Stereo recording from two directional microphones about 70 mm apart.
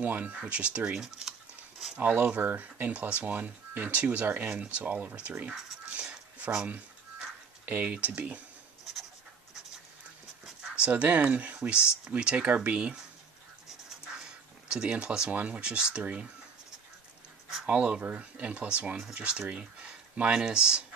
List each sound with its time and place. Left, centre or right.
0.0 s speech: right
2.0 s speech: right
5.9 s a sound: centre
10.9 s speech: centre
14.7 s speech: centre
17.6 s speech: centre